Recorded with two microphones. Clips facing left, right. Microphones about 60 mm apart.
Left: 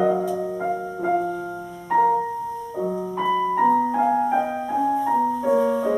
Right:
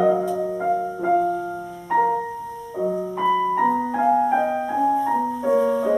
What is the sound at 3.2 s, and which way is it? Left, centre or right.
Piano, centre.